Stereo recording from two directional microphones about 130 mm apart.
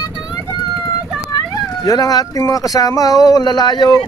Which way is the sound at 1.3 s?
30° left (ahead or behind).